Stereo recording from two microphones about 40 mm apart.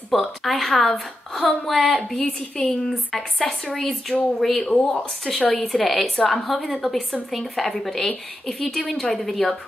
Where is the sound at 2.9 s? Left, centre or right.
Centre.